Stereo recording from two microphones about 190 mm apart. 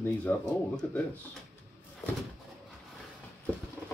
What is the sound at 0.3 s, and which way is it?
Speech, 10° left (ahead or behind).